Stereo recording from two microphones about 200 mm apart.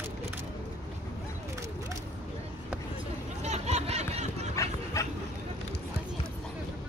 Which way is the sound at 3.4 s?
35° right (ahead or behind).